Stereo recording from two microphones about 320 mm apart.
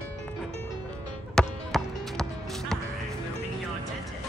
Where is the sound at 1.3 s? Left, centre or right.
Centre.